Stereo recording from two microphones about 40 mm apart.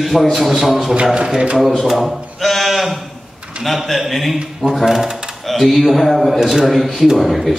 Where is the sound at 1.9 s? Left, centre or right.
Centre.